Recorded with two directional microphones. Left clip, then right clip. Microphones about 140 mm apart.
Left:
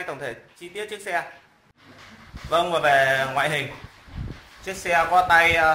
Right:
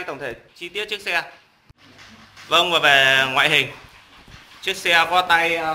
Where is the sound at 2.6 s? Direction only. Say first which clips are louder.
Right 4 dB; centre (ahead or behind).